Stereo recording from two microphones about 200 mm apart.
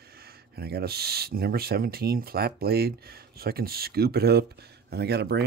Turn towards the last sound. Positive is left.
turn(degrees=-55)  # may be behind; listen again after turning